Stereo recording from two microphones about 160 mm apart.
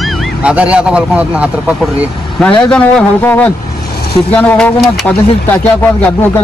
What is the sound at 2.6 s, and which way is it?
Speech, 5° left (ahead or behind).